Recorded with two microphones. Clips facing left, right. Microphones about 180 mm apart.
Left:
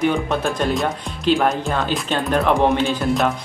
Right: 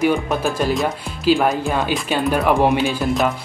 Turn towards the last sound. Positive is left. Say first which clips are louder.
# even
turn(degrees=0)  # may be behind; listen again after turning